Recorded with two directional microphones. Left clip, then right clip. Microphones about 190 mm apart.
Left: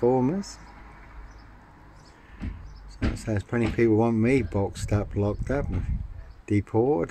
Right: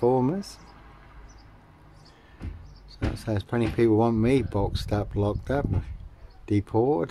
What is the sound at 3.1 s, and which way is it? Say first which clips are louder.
Speech: right 1 dB; 5° right (ahead or behind).